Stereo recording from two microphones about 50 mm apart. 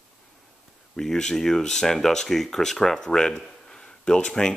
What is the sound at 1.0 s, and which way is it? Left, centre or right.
Speech, centre.